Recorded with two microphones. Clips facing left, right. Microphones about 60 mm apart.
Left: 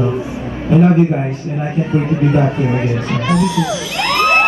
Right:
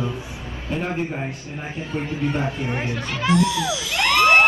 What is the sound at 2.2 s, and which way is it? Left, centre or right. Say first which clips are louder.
Speech: left 8 dB; left.